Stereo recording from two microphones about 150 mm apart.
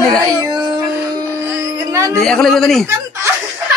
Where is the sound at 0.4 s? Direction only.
25° right (ahead or behind).